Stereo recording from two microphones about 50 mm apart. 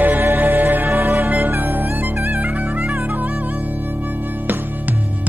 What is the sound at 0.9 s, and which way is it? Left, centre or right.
Music, right.